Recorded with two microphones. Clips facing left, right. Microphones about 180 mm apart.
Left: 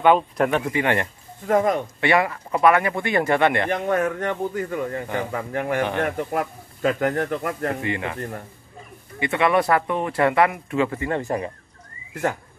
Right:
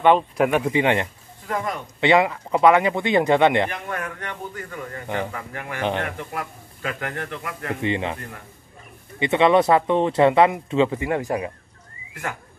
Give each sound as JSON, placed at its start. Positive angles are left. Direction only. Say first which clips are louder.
{"t": 0.0, "sound": "speech", "louder": "even", "side_deg": 0}
{"t": 0.5, "sound": "speech", "louder": "right 2 dB", "side_deg": -15}
{"t": 1.5, "sound": "a man's voice", "louder": "left 8 dB", "side_deg": 45}
{"t": 2.0, "sound": "speech", "louder": "right 2 dB", "side_deg": -20}
{"t": 3.7, "sound": "a man's voice", "louder": "left 9 dB", "side_deg": 45}
{"t": 5.8, "sound": "speech", "louder": "right 1 dB", "side_deg": -20}
{"t": 6.0, "sound": "a man's voice", "louder": "left 6 dB", "side_deg": 40}
{"t": 7.8, "sound": "speech", "louder": "right 3 dB", "side_deg": -25}
{"t": 9.2, "sound": "speech", "louder": "right 3 dB", "side_deg": -20}
{"t": 12.1, "sound": "speech", "louder": "left 7 dB", "side_deg": 40}